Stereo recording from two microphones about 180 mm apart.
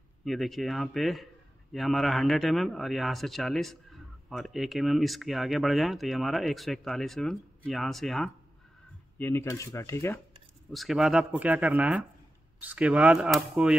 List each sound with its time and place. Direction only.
0.2 s a man's voice: centre (ahead or behind)
9.2 s coin: 15° left (ahead or behind)
10.7 s speech: centre (ahead or behind)